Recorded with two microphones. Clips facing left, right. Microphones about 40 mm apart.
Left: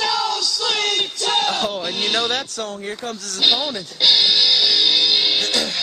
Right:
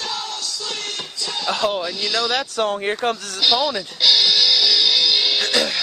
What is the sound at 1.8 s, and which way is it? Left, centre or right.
Speech, left.